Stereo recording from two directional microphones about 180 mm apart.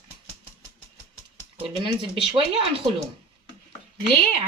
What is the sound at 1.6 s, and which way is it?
Speech, 30° right (ahead or behind).